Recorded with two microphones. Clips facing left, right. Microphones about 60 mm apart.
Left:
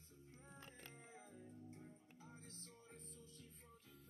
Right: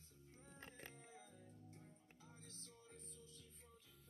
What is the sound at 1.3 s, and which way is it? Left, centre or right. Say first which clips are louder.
Music: left 5 dB; left.